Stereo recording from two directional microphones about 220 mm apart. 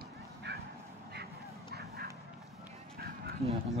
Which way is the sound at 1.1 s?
45° right (ahead or behind).